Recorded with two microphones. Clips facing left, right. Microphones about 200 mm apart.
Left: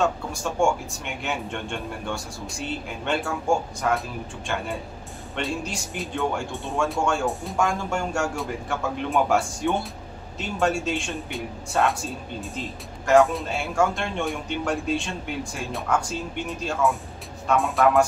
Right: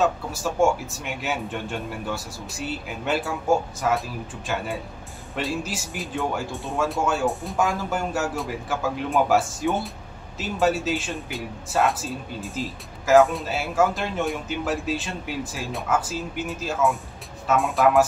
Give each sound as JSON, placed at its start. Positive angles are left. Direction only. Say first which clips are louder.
{"t": 0.0, "sound": "a man's voice", "louder": "right 1 dB", "side_deg": -5}